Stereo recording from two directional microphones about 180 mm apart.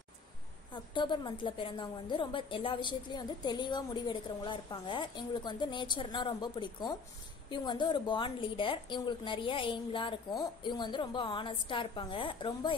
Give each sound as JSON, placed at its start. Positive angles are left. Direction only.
{"t": 0.9, "sound": "a woman's voice", "side_deg": 25}